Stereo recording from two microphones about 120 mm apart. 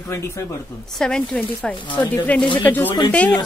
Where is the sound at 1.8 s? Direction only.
40° left (ahead or behind).